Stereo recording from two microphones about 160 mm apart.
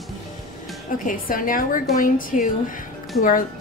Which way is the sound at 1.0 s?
60° left (ahead or behind).